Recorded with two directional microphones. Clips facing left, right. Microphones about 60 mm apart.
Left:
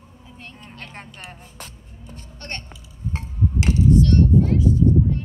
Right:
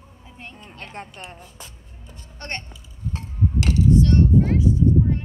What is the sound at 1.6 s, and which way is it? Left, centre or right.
Music, left.